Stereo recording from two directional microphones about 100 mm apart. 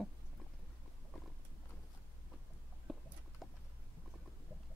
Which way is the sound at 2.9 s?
Centre (ahead or behind).